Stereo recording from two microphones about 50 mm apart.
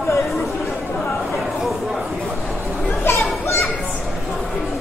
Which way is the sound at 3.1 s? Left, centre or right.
Left.